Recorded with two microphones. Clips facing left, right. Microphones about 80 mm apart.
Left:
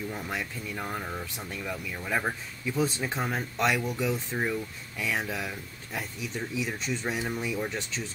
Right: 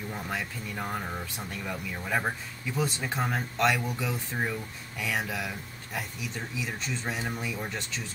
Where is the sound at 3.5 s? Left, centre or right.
Centre.